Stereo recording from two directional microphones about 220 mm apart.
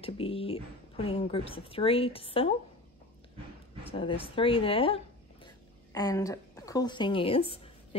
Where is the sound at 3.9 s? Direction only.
25° left (ahead or behind).